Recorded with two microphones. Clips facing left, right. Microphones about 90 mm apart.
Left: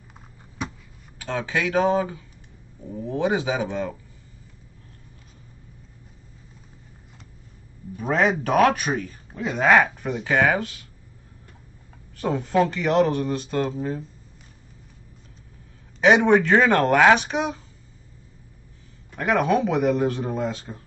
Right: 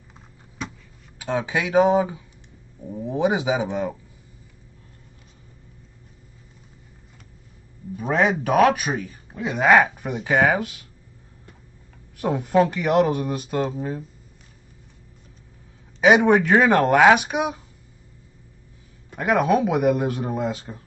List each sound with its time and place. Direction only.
1.2 s speech: 15° right (ahead or behind)
8.0 s speech: centre (ahead or behind)
12.2 s speech: 10° right (ahead or behind)
16.0 s speech: 10° right (ahead or behind)
19.1 s speech: 10° right (ahead or behind)